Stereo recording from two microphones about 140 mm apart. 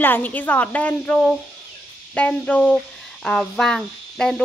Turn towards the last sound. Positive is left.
turn(degrees=5)  # may be behind; listen again after turning